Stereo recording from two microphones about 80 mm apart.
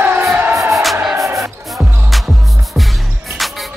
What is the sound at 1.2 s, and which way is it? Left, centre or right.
Music, right.